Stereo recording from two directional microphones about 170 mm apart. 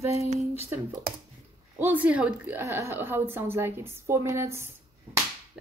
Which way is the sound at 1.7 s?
10° right (ahead or behind).